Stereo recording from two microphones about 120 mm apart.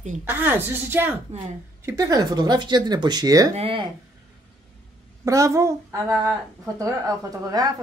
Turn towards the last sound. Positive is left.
turn(degrees=-30)  # may be behind; listen again after turning